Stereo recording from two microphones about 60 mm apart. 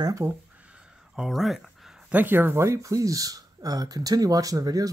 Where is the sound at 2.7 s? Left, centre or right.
Right.